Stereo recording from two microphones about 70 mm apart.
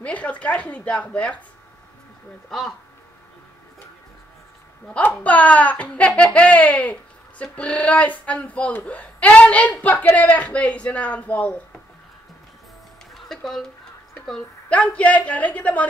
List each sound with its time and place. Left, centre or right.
0.0 s speech: centre
5.1 s speech: left
13.1 s music: centre
14.7 s speech: centre